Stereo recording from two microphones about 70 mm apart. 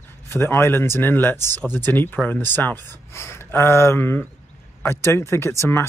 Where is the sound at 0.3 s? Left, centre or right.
Left.